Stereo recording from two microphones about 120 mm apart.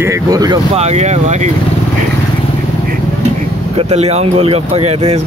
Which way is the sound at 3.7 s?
65° right (ahead or behind).